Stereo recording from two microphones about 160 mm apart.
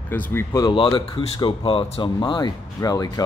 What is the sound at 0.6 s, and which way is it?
Speech, 30° left (ahead or behind).